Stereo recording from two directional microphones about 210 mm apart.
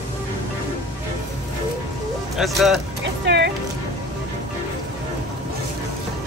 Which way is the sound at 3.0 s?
55° right (ahead or behind).